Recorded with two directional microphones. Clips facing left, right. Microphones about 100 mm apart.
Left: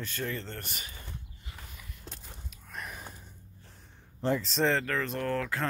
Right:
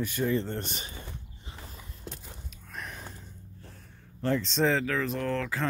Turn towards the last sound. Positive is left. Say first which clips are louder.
# right 1 dB
turn(degrees=0)  # may be behind; listen again after turning